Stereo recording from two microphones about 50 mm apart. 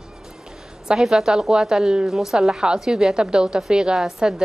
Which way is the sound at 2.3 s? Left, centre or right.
Centre.